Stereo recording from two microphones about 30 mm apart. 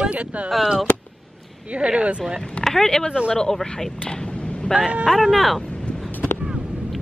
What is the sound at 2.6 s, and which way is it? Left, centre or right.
Speech, centre.